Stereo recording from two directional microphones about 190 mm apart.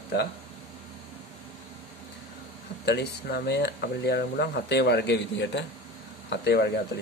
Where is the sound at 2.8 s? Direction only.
65° left (ahead or behind).